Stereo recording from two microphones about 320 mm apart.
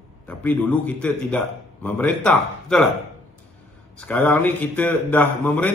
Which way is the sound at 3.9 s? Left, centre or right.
Centre.